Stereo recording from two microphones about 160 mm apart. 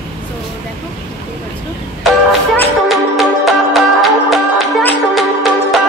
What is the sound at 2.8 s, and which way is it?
Music, centre (ahead or behind).